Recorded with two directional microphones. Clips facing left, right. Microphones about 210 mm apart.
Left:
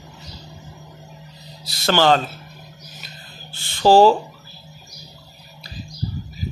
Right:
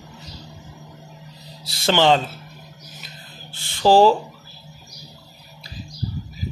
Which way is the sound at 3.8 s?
15° right (ahead or behind).